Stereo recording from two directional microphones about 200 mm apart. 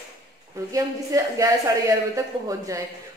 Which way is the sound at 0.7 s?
15° right (ahead or behind).